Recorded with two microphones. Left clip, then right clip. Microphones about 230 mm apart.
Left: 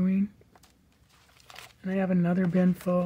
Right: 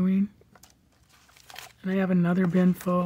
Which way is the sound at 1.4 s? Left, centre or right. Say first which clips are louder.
Right 3 dB; centre.